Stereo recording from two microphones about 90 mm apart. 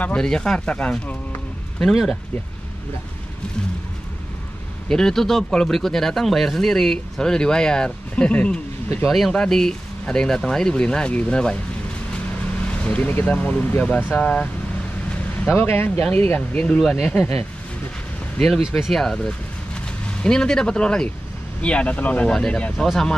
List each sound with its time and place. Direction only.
0.0 s speech: 10° left (ahead or behind)
4.8 s speech: 5° left (ahead or behind)
9.0 s speech: 5° left (ahead or behind)
12.6 s speech: 15° left (ahead or behind)
15.5 s speech: 25° left (ahead or behind); by 17.1 s 5° left (ahead or behind)
18.4 s speech: centre (ahead or behind)